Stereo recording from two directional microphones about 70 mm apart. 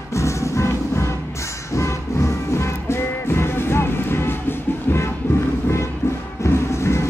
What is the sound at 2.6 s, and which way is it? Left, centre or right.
Music, left.